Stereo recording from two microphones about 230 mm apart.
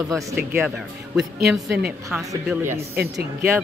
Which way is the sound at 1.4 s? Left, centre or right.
Centre.